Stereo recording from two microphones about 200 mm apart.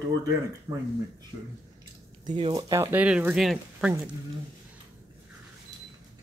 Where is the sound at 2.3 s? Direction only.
25° right (ahead or behind).